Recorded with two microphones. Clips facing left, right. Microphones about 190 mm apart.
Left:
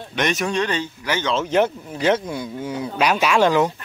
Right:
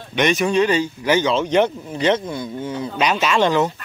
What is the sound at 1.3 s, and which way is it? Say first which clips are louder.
Speech: right 2 dB; 5° left (ahead or behind).